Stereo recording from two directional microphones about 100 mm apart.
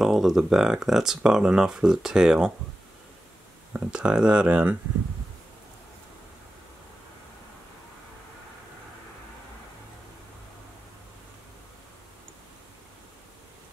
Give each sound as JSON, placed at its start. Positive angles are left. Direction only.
{"t": 0.0, "sound": "speech", "side_deg": -5}
{"t": 3.7, "sound": "speech", "side_deg": -10}